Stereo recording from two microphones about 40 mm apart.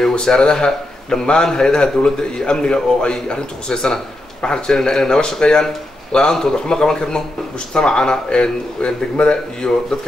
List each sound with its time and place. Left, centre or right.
0.1 s a man's voice: centre